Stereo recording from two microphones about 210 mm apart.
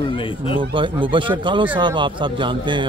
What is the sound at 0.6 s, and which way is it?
A man's voice, 25° right (ahead or behind).